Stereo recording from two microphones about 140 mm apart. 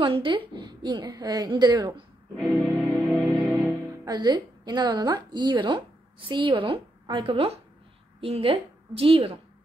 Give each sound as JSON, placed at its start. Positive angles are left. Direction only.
{"t": 0.0, "sound": "a woman's voice", "side_deg": -35}
{"t": 2.4, "sound": "music", "side_deg": -15}
{"t": 4.0, "sound": "a woman's voice", "side_deg": -30}